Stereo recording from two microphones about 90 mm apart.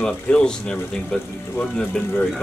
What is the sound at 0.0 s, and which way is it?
Speech, 10° left (ahead or behind).